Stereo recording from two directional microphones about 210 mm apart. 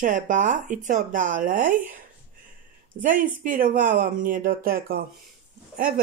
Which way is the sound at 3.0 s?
40° right (ahead or behind).